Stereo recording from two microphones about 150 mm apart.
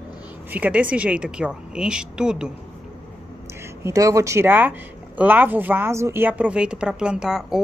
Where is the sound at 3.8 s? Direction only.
20° right (ahead or behind); by 7.6 s 5° right (ahead or behind).